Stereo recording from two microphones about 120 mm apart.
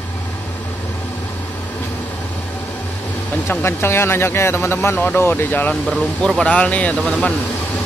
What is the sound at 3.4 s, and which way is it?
Speech, 20° left (ahead or behind).